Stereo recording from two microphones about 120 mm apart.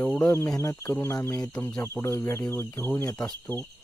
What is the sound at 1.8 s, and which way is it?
Speech, 20° left (ahead or behind).